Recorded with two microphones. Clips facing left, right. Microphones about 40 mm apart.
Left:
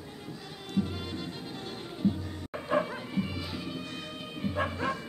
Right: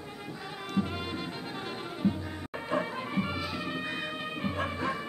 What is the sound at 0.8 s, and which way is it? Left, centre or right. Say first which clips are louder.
Music: even; right.